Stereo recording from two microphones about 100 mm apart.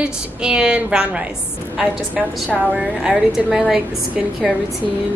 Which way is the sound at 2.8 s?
5° right (ahead or behind).